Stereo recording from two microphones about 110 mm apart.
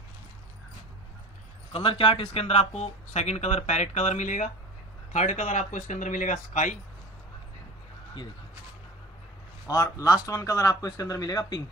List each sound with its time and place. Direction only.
1.7 s speech: 55° left (ahead or behind); by 5.9 s 90° left
9.7 s speech: 30° left (ahead or behind)